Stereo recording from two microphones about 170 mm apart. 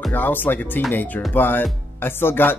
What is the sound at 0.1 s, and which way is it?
Music, 10° left (ahead or behind).